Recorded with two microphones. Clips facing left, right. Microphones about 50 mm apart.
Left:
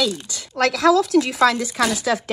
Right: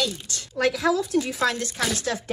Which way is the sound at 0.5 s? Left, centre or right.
Left.